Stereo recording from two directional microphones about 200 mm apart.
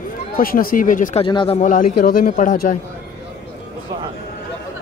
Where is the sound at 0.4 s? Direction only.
45° left (ahead or behind).